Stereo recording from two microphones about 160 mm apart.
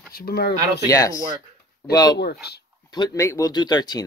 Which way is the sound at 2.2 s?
90° left.